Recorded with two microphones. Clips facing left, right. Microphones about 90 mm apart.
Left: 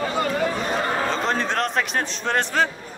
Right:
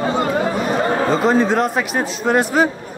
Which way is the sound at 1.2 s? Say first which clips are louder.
Right 8 dB; 5° right (ahead or behind).